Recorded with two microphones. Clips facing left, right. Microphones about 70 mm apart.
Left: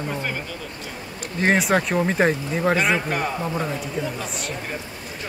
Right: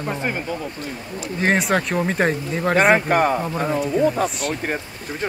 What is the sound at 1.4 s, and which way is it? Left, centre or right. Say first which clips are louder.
Speech: even; centre.